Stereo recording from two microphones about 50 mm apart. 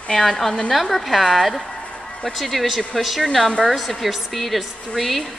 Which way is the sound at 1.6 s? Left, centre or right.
Left.